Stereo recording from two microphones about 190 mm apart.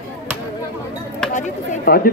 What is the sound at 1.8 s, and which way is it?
Speech, 50° left (ahead or behind).